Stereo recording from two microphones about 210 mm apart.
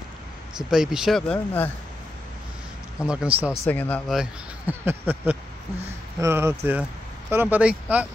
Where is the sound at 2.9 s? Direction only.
5° right (ahead or behind).